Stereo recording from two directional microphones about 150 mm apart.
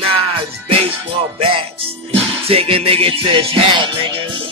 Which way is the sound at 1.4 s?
40° right (ahead or behind).